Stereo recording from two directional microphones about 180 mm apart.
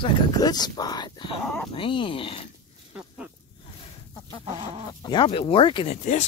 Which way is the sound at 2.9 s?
5° right (ahead or behind).